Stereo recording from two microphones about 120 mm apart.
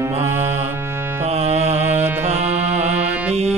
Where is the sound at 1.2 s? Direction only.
65° right (ahead or behind).